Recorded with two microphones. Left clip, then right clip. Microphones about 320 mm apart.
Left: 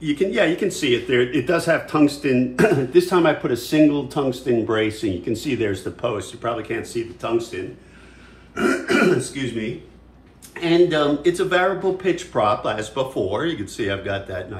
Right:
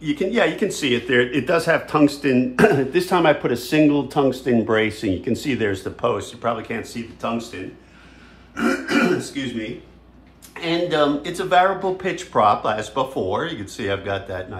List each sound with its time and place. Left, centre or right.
0.0 s speech: centre
8.5 s speech: centre
10.5 s speech: centre